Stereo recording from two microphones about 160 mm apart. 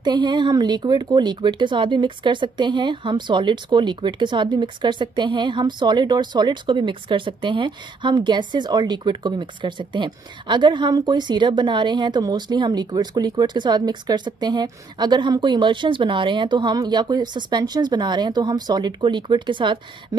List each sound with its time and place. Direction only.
0.0 s speech: 30° right (ahead or behind)